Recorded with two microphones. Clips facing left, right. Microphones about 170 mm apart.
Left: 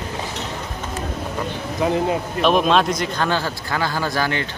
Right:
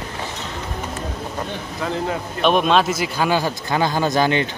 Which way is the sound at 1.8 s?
20° left (ahead or behind).